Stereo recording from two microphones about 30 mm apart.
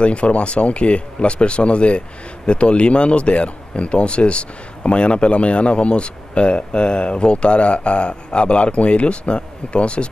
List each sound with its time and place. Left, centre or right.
0.0 s speech: left